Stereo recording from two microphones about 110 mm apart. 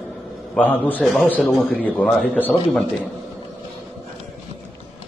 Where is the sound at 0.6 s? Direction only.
15° left (ahead or behind).